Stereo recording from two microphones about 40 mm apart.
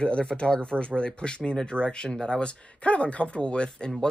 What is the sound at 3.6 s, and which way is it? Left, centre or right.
Speech, centre.